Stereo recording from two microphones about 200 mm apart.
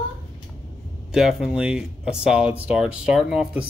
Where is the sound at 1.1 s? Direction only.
Centre (ahead or behind).